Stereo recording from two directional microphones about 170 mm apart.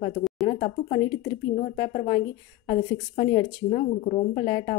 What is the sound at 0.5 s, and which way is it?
Speech, 40° left (ahead or behind).